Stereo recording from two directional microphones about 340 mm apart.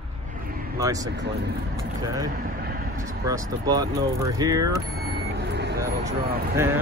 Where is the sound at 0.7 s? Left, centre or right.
Centre.